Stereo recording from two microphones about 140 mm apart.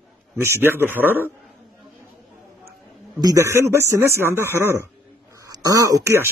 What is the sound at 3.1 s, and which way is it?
Speech, 25° right (ahead or behind).